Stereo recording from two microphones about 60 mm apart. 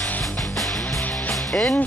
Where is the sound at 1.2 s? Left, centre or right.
Left.